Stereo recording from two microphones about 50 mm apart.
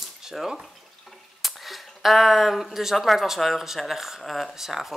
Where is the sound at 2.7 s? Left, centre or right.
Centre.